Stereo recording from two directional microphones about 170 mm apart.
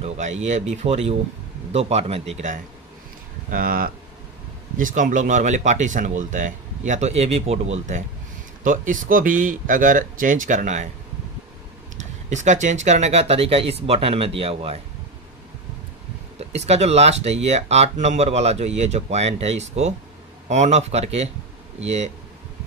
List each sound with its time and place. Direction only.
0.0 s speech: 40° right (ahead or behind)
3.4 s speech: 60° right (ahead or behind); by 8.0 s 40° right (ahead or behind)
8.6 s speech: 50° right (ahead or behind)
12.3 s speech: 45° right (ahead or behind)
16.3 s speech: 40° right (ahead or behind)